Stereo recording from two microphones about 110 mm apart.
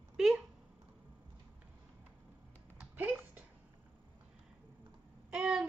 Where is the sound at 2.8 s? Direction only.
15° right (ahead or behind).